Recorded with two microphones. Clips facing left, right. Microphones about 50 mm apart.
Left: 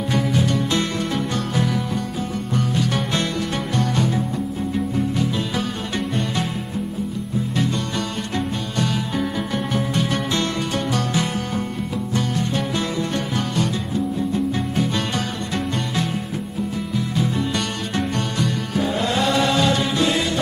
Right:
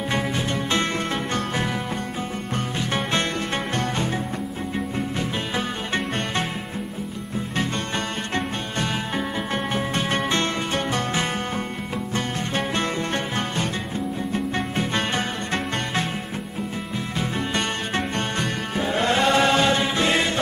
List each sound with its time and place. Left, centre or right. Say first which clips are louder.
0.1 s music: left 5 dB; right
9.9 s music: right 1 dB; right
17.9 s music: left 4 dB; right